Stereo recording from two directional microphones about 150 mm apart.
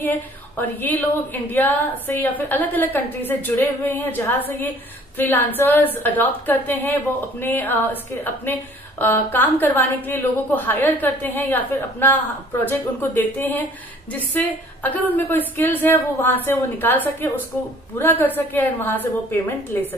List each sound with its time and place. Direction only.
0.6 s a woman's voice: 10° left (ahead or behind)